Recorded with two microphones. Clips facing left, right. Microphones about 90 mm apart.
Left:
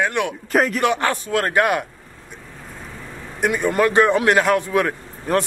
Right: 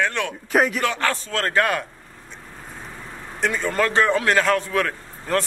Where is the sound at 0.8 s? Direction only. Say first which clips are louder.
Left 4 dB; 20° left (ahead or behind).